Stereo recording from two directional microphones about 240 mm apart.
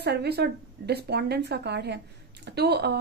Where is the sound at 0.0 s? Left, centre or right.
Right.